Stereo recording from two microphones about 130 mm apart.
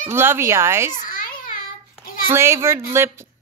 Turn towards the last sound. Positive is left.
turn(degrees=-20)  # may be behind; listen again after turning